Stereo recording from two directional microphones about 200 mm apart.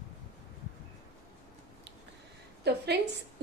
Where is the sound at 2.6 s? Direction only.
55° right (ahead or behind).